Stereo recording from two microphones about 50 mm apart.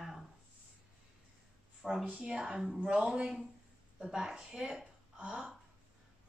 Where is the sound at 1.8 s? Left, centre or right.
Centre.